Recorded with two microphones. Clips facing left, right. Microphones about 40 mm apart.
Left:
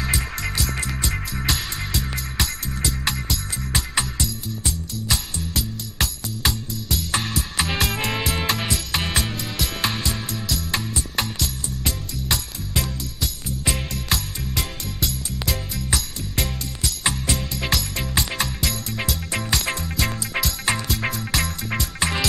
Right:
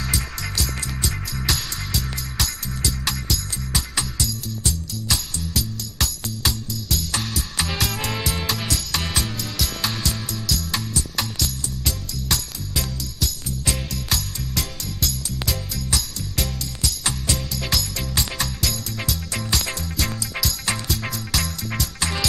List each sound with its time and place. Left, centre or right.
0.1 s music: centre
1.0 s music: left
1.5 s music: centre
9.8 s music: left
16.3 s music: left
21.3 s music: centre
21.7 s music: left